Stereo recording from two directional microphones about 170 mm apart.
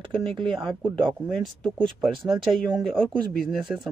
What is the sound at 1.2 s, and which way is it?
Speech, centre (ahead or behind).